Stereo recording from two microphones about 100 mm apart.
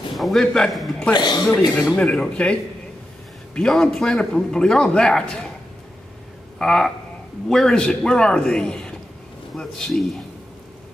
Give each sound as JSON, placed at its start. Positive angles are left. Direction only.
{"t": 0.1, "sound": "a man's voice", "side_deg": 0}
{"t": 1.1, "sound": "speech", "side_deg": 45}
{"t": 2.0, "sound": "a man's voice", "side_deg": 10}
{"t": 3.5, "sound": "a man's voice", "side_deg": 5}
{"t": 6.6, "sound": "a man's voice", "side_deg": 5}